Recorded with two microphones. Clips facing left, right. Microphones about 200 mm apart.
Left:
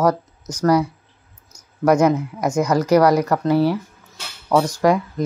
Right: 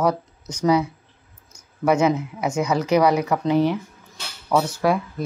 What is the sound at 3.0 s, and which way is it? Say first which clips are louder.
Speech: left 3 dB; 10° right (ahead or behind).